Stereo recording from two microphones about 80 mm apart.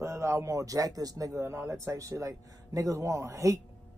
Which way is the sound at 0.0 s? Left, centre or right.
Right.